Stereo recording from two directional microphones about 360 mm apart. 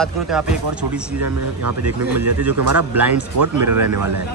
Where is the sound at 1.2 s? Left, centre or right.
Right.